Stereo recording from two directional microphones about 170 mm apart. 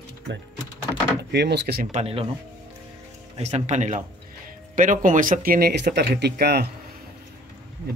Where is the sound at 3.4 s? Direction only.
45° right (ahead or behind); by 6.7 s 70° right (ahead or behind).